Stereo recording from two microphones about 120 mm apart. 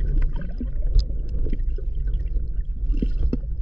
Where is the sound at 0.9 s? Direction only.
55° left (ahead or behind).